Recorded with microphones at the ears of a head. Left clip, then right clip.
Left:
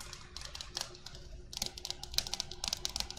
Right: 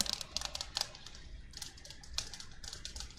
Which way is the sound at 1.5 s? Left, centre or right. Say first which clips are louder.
Left 9 dB; left.